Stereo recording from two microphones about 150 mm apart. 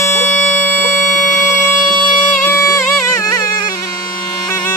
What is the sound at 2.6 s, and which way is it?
Music, 20° left (ahead or behind).